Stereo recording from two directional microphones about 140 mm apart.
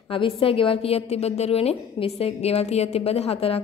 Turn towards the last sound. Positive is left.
turn(degrees=45)  # may be behind; listen again after turning